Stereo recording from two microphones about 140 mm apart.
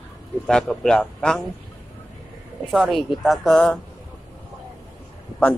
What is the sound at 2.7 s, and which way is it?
Speech, centre (ahead or behind).